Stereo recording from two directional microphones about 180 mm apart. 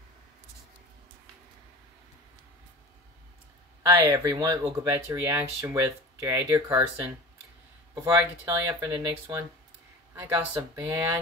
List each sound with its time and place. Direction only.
3.8 s speech: 15° right (ahead or behind)
10.1 s speech: 15° right (ahead or behind)